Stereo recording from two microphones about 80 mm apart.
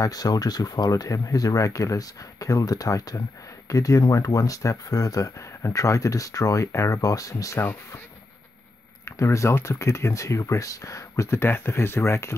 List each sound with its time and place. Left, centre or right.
0.0 s speech: left
9.0 s speech: left